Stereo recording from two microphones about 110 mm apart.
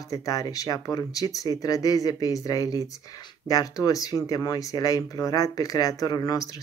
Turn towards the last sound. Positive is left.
turn(degrees=35)  # may be behind; listen again after turning